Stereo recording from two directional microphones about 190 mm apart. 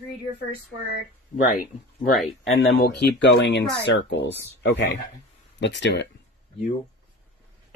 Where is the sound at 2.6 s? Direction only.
60° left (ahead or behind).